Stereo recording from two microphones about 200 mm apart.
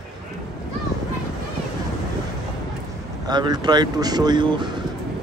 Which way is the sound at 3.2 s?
20° right (ahead or behind).